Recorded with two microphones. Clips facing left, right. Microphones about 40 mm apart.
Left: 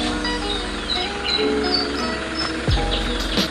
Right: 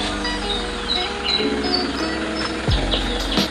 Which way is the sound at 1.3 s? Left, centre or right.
Right.